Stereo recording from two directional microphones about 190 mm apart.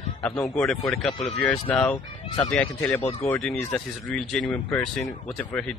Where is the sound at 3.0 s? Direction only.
35° left (ahead or behind).